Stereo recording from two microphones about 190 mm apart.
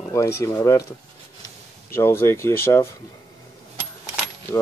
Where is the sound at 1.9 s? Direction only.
15° left (ahead or behind).